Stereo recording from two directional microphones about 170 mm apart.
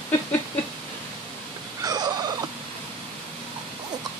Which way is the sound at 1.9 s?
25° right (ahead or behind).